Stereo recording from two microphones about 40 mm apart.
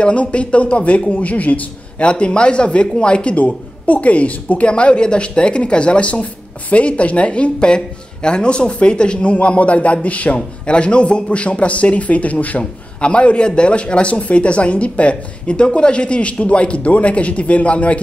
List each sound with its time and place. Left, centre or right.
0.0 s speech: left
3.3 s speech: left
13.0 s speech: left